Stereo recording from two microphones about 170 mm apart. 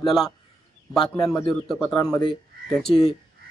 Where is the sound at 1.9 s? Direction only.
20° left (ahead or behind).